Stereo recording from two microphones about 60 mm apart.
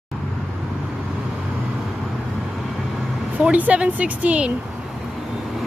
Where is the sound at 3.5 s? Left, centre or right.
Right.